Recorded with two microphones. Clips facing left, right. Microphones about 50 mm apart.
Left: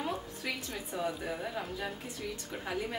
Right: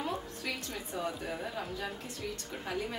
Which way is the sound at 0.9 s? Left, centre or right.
Centre.